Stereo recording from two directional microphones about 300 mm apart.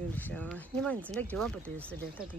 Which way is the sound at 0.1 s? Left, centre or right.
Centre.